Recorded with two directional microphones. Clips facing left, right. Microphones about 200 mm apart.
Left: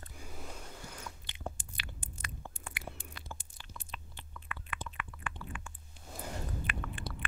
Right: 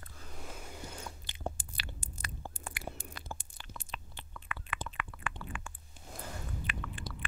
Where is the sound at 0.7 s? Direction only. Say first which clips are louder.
Right 2 dB; 25° right (ahead or behind); by 3.4 s 45° right (ahead or behind).